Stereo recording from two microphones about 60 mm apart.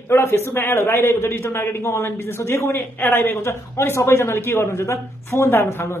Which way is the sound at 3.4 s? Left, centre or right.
Left.